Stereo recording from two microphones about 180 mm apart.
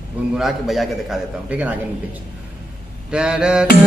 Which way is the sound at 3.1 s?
5° right (ahead or behind).